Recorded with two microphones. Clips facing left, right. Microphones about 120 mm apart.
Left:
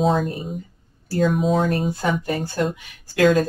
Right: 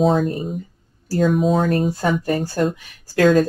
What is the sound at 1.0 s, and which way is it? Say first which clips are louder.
Speech: right 2 dB; 40° right (ahead or behind).